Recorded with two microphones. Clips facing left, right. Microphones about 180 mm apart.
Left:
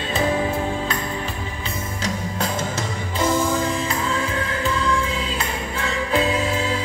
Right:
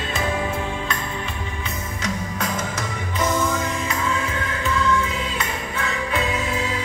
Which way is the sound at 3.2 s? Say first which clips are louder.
Left 2 dB; 30° left (ahead or behind).